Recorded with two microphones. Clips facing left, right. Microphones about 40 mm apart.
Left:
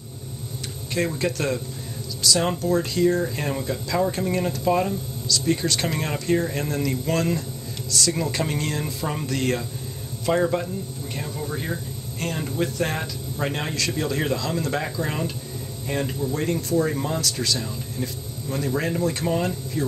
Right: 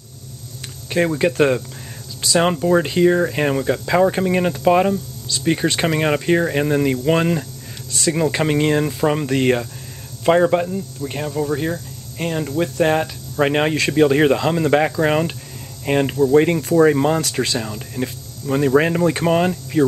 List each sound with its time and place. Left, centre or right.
0.9 s speech: right
12.2 s speech: centre
12.8 s speech: right
13.4 s speech: right
16.3 s speech: right